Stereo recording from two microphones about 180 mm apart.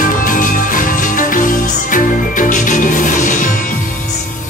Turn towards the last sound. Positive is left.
turn(degrees=45)  # may be behind; listen again after turning